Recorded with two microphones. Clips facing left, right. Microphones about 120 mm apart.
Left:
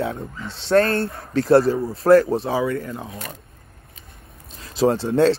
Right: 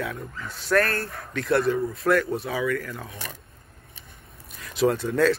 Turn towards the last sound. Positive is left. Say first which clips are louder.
# left 4 dB
turn(degrees=30)  # may be behind; listen again after turning